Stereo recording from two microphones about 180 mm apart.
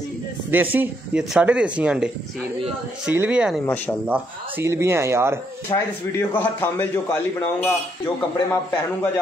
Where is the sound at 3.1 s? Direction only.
5° right (ahead or behind).